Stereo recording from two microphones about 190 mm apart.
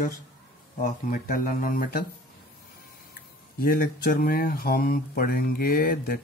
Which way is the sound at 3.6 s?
50° left (ahead or behind).